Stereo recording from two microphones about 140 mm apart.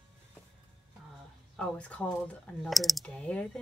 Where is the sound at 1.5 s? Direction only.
10° left (ahead or behind).